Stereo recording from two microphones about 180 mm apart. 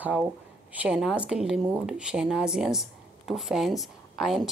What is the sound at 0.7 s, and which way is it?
Speech, 5° right (ahead or behind).